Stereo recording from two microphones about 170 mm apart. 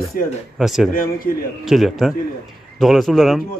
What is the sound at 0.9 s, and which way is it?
Speech, 55° left (ahead or behind).